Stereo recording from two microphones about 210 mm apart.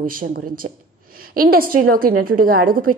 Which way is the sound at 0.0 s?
45° right (ahead or behind).